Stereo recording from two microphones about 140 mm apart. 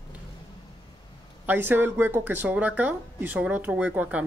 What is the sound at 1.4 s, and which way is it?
Speech, 15° right (ahead or behind).